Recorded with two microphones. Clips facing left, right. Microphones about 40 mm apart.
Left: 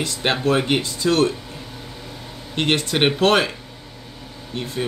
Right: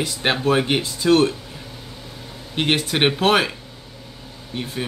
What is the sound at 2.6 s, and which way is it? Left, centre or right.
Speech, centre.